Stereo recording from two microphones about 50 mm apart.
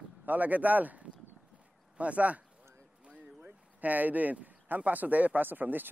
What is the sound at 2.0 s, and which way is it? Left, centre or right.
Speech, right.